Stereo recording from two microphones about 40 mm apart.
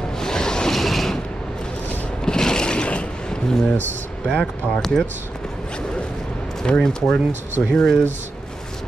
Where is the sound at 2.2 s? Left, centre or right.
Centre.